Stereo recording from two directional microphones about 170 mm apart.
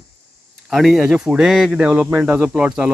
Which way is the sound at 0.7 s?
Centre (ahead or behind).